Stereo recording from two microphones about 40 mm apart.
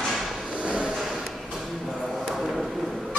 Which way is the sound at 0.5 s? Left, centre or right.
Right.